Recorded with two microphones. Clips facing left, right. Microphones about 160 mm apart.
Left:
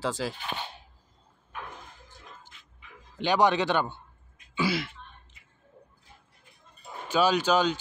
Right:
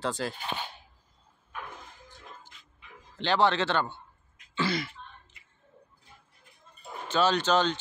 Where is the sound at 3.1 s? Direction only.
15° left (ahead or behind).